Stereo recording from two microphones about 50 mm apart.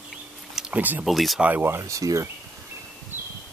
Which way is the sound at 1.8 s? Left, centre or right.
Right.